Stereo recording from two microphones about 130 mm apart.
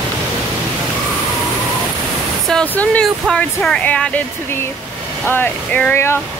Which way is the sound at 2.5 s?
5° left (ahead or behind).